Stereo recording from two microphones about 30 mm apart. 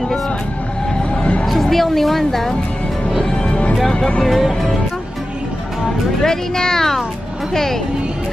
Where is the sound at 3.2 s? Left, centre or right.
Left.